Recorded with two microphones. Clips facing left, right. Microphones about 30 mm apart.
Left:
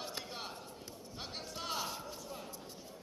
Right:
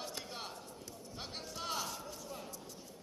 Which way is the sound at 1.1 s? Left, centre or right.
Centre.